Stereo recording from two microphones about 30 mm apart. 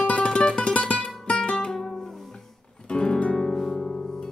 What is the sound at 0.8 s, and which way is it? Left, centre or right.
Music, left.